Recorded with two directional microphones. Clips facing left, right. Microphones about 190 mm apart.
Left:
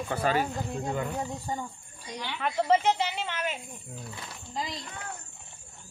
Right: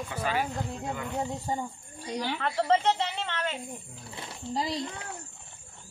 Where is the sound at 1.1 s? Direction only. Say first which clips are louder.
Right 2 dB; 20° right (ahead or behind); by 2.4 s 35° right (ahead or behind).